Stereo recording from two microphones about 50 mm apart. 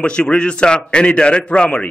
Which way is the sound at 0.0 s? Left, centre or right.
Left.